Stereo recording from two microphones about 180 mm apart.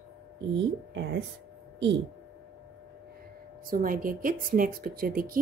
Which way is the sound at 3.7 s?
50° right (ahead or behind).